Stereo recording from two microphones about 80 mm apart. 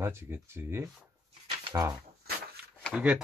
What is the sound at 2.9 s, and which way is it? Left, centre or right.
Speech, centre.